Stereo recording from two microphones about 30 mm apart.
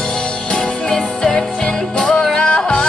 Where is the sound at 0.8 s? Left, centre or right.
Left.